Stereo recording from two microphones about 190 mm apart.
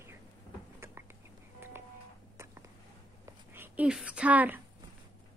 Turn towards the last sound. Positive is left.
turn(degrees=-10)  # may be behind; listen again after turning